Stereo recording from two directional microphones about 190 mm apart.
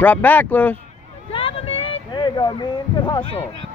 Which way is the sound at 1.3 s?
30° left (ahead or behind).